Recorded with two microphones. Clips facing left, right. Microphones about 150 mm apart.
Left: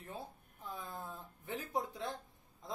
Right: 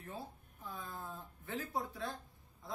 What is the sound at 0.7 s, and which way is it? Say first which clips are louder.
A man's voice: even; 20° left (ahead or behind).